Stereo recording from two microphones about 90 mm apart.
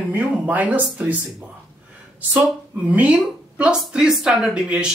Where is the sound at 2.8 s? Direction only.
15° right (ahead or behind).